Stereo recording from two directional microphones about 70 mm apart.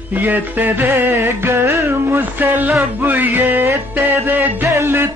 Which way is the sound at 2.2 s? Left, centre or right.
Right.